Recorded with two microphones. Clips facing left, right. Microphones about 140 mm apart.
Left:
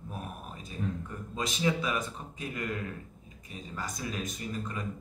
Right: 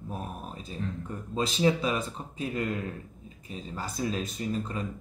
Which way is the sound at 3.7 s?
30° right (ahead or behind).